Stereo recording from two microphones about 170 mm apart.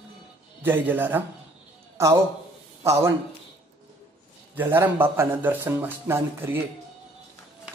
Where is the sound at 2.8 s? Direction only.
15° right (ahead or behind).